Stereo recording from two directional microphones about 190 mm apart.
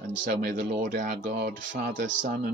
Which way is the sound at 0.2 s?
45° right (ahead or behind).